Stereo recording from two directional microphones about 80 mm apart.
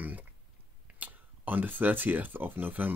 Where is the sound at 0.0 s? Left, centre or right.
Right.